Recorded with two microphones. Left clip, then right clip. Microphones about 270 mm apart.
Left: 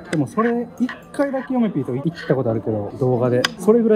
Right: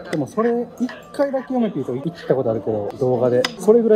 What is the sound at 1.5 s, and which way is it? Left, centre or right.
Speech, left.